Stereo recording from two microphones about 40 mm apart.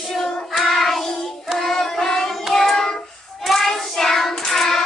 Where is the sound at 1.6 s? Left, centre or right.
Centre.